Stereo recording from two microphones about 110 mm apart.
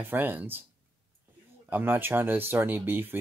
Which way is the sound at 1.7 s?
20° right (ahead or behind).